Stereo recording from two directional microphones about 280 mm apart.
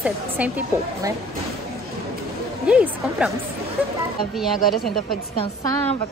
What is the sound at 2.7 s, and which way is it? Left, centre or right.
Speech, centre.